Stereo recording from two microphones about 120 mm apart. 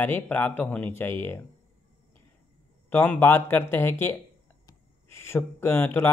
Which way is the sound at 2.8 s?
15° left (ahead or behind).